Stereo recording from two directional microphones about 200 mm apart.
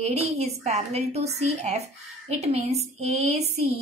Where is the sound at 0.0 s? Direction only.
35° right (ahead or behind).